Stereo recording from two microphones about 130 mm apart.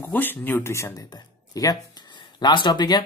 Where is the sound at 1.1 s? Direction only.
30° left (ahead or behind).